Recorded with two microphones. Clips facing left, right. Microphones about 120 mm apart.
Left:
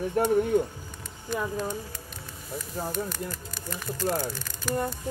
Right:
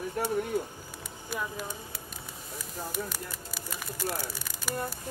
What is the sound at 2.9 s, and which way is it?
Speech, 5° right (ahead or behind).